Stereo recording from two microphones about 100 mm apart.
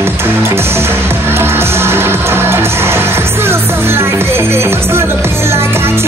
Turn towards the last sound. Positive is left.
turn(degrees=-25)  # may be behind; listen again after turning